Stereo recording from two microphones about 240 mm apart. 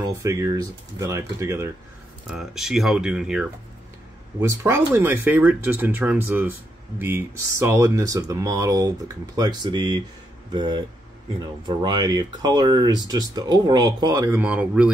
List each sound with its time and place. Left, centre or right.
0.2 s speech: centre